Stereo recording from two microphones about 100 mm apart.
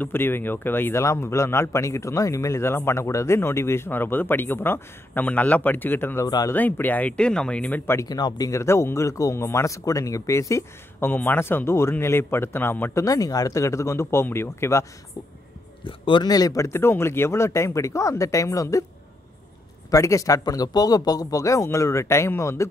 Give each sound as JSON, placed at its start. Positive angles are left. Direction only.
{"t": 0.0, "sound": "a man's voice", "side_deg": 20}
{"t": 6.2, "sound": "speech", "side_deg": 40}
{"t": 6.5, "sound": "speech", "side_deg": 15}
{"t": 8.1, "sound": "a man's voice", "side_deg": 40}
{"t": 13.0, "sound": "a man's voice", "side_deg": 35}
{"t": 15.8, "sound": "speech", "side_deg": 55}
{"t": 16.3, "sound": "speech", "side_deg": 40}
{"t": 19.9, "sound": "speech", "side_deg": 30}